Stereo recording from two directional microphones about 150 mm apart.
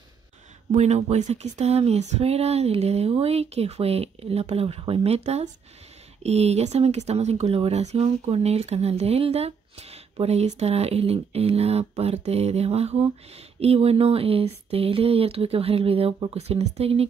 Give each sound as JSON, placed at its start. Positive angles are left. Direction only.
{"t": 0.7, "sound": "speech", "side_deg": -50}